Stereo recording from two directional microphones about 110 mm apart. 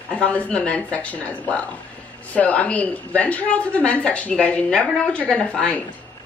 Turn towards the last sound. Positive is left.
turn(degrees=10)  # may be behind; listen again after turning